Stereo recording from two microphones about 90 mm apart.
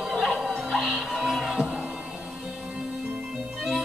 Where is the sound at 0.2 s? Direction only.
5° right (ahead or behind).